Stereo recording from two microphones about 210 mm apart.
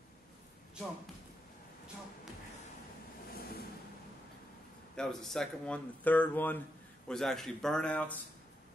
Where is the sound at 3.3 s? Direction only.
45° left (ahead or behind).